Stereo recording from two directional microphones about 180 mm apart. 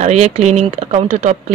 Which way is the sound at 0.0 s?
40° right (ahead or behind).